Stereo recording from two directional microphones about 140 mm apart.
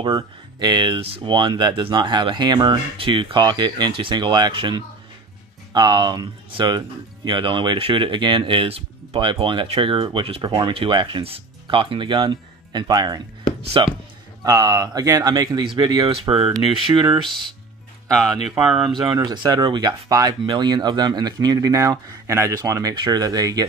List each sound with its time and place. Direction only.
0.0 s speech: 35° right (ahead or behind)
16.3 s speech: 45° right (ahead or behind)
18.9 s speech: 30° right (ahead or behind)